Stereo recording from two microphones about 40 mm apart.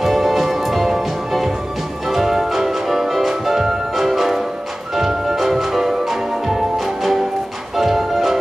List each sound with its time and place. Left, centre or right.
0.0 s music: centre